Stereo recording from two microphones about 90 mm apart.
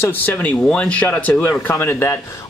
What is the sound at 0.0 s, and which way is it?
Speech, 20° left (ahead or behind).